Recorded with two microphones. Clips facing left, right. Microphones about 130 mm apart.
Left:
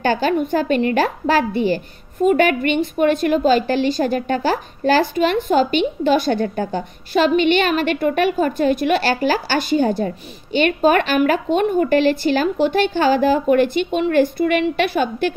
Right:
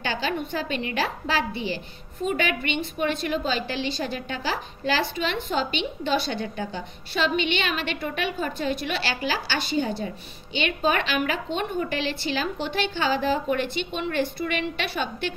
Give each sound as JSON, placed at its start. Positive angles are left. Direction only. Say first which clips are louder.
{"t": 0.0, "sound": "a woman's voice", "louder": "left 10 dB", "side_deg": 45}